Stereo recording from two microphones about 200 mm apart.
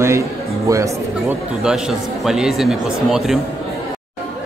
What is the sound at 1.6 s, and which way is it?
Speech, centre (ahead or behind).